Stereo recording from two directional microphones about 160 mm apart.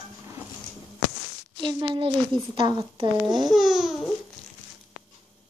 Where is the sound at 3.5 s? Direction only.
Centre (ahead or behind).